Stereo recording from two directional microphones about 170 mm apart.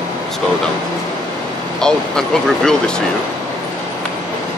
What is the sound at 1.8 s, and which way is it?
Speech, 5° left (ahead or behind).